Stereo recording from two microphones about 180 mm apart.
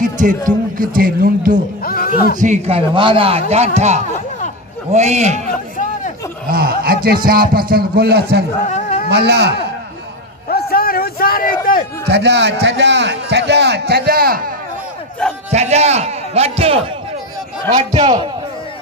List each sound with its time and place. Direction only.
0.0 s a man's voice: 45° right (ahead or behind)
1.9 s a sound: 55° left (ahead or behind)
2.3 s speech: 40° right (ahead or behind)
6.4 s a man's voice: 55° right (ahead or behind)
8.6 s a sound: 40° left (ahead or behind)
9.1 s a man's voice: 70° right (ahead or behind)
10.5 s a sound: 55° left (ahead or behind)
12.1 s a man's voice: 75° right (ahead or behind); by 14.5 s 55° right (ahead or behind)
15.5 s speech: 35° right (ahead or behind)
17.9 s a man's voice: 30° right (ahead or behind)